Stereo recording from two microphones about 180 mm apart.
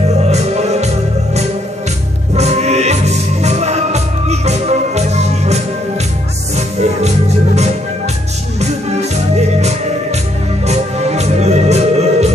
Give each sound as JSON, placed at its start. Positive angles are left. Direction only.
{"t": 0.2, "sound": "music", "side_deg": -35}
{"t": 8.5, "sound": "music", "side_deg": -40}